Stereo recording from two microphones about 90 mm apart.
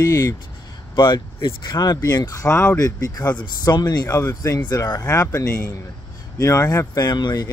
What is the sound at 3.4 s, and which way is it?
Speech, 50° left (ahead or behind).